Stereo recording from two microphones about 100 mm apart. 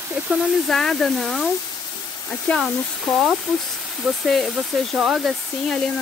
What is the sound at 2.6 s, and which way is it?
Speech, 5° right (ahead or behind).